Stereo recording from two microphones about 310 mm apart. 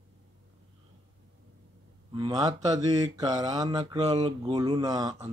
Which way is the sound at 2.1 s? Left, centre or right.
Centre.